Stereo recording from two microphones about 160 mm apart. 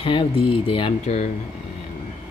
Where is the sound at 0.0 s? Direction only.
35° left (ahead or behind).